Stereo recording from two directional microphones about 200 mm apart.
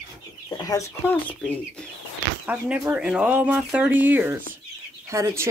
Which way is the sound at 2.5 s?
5° right (ahead or behind).